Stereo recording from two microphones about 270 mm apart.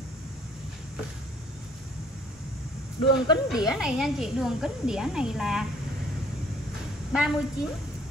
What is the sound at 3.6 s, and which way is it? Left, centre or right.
A woman's voice, centre.